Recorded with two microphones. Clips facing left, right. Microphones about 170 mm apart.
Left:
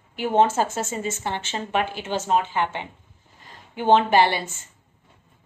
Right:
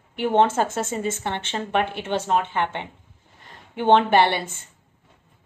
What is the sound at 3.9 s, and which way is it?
Speech, 55° right (ahead or behind).